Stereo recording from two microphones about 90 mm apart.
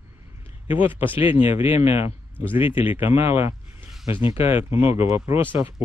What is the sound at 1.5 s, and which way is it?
Speech, 90° left.